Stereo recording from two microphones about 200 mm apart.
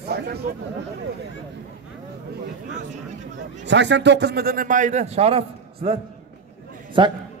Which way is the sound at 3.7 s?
60° right (ahead or behind).